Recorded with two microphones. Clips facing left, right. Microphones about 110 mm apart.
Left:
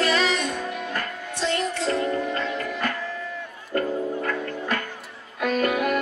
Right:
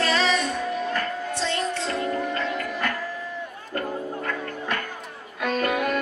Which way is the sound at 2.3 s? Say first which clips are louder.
Even; 30° left (ahead or behind).